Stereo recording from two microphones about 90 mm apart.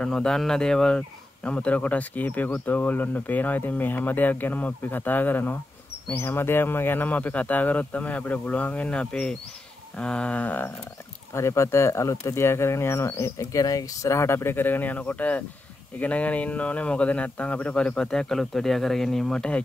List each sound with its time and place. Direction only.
0.0 s speech: 10° left (ahead or behind)
11.3 s speech: 30° left (ahead or behind); by 19.6 s 10° left (ahead or behind)